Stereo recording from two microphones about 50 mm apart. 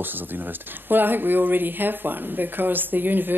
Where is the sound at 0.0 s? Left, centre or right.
Right.